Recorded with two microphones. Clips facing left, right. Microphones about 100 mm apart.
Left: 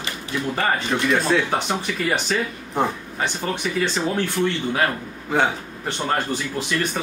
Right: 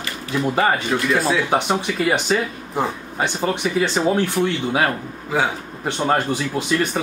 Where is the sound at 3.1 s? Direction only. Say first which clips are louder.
Right 4 dB; 20° right (ahead or behind).